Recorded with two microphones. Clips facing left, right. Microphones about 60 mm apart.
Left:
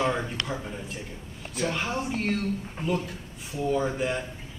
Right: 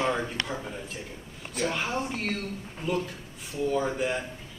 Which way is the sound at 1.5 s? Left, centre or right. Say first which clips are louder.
Even; centre.